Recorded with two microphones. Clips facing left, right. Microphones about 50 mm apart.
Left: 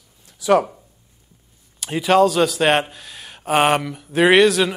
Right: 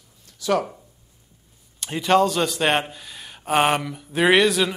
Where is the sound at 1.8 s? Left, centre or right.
Centre.